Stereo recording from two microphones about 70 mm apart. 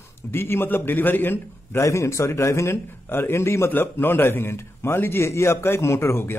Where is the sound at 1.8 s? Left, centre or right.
Left.